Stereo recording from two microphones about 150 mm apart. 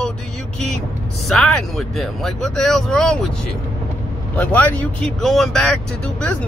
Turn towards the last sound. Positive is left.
turn(degrees=5)  # may be behind; listen again after turning